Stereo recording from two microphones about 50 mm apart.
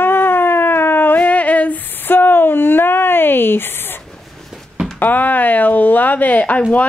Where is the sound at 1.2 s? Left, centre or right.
Left.